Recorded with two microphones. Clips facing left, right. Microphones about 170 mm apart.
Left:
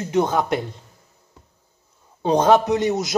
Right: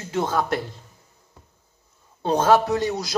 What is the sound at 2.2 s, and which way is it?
Speech, 15° left (ahead or behind).